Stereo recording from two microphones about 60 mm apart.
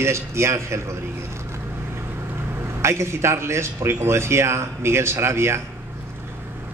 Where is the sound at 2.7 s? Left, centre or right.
Right.